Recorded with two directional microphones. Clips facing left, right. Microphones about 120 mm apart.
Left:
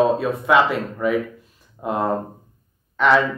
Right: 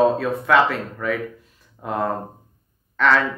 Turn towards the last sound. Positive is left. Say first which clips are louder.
# left 2 dB
turn(degrees=15)  # may be behind; listen again after turning